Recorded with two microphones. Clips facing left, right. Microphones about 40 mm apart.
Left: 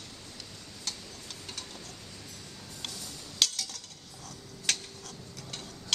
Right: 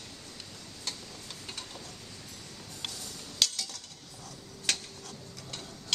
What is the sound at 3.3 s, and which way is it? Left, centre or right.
Cutlery, centre.